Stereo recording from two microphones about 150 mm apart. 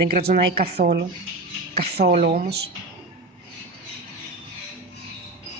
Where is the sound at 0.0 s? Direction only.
85° right.